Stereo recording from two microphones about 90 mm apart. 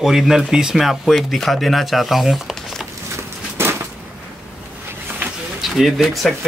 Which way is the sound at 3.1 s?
25° right (ahead or behind).